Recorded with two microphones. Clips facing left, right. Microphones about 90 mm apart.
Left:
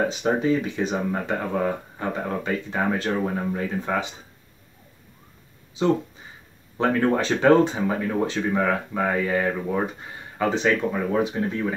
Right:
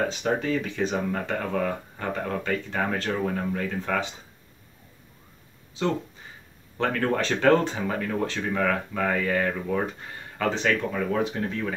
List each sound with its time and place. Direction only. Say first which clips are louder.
0.1 s speech: left 4 dB; 15° left (ahead or behind)
6.8 s speech: left 4 dB; 15° left (ahead or behind)